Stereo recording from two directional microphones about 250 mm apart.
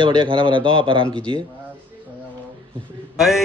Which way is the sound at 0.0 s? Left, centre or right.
Centre.